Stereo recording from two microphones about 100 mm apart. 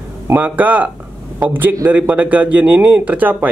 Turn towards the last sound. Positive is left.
turn(degrees=-15)  # may be behind; listen again after turning